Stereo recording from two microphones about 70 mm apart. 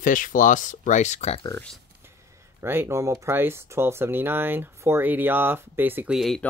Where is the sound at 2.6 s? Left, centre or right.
Right.